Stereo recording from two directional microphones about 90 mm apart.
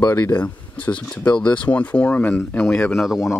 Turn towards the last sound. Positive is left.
turn(degrees=0)  # may be behind; listen again after turning